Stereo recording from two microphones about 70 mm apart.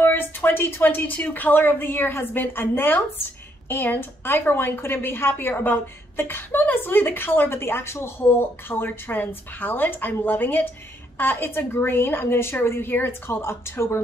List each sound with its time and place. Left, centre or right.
0.0 s a woman's voice: left